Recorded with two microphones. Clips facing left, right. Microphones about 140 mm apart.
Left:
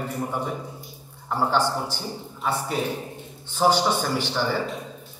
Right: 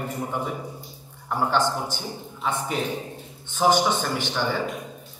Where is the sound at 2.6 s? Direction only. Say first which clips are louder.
Even; 10° left (ahead or behind).